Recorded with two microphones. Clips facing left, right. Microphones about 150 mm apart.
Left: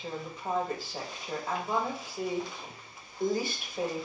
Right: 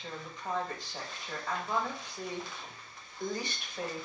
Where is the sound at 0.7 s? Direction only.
5° left (ahead or behind).